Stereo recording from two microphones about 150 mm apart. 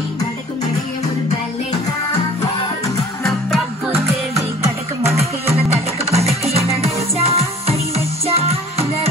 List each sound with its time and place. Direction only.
5.0 s music: 45° right (ahead or behind)